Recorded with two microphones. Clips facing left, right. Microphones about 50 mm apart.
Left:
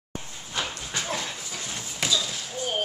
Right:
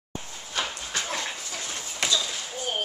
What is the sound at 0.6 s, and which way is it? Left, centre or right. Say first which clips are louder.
Dog: right 1 dB; centre.